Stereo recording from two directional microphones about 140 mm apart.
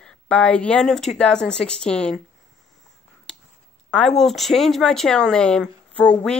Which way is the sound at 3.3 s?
5° left (ahead or behind).